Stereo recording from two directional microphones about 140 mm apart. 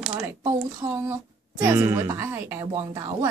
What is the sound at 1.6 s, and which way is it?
Speech, 20° right (ahead or behind).